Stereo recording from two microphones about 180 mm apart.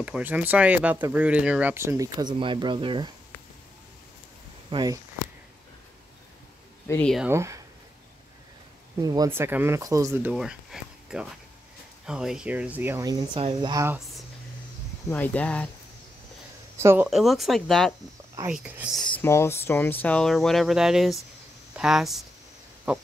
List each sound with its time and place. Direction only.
0.0 s speech: 10° right (ahead or behind); by 3.1 s 25° right (ahead or behind)
4.6 s speech: 20° right (ahead or behind)
6.9 s speech: 5° left (ahead or behind)
7.2 s speech: 15° right (ahead or behind)
9.0 s speech: 20° right (ahead or behind)
13.8 s speech: 5° right (ahead or behind)
15.0 s speech: 10° left (ahead or behind)
16.8 s speech: 10° right (ahead or behind)
17.1 s speech: centre (ahead or behind)
19.1 s speech: 15° left (ahead or behind); by 23.0 s 5° right (ahead or behind)